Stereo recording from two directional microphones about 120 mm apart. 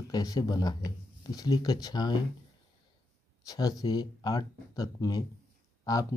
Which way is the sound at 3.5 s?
30° left (ahead or behind).